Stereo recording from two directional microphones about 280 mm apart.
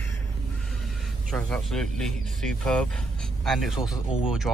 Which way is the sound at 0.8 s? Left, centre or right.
Centre.